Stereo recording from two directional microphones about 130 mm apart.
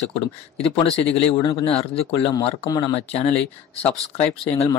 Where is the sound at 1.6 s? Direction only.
50° left (ahead or behind).